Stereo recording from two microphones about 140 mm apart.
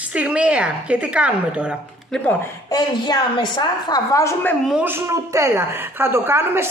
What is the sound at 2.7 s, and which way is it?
A woman's voice, 30° left (ahead or behind).